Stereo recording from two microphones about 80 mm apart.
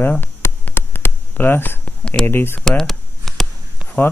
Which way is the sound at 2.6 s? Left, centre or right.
Centre.